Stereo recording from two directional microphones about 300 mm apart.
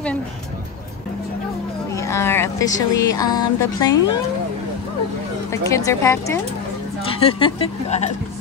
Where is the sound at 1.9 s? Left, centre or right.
Centre.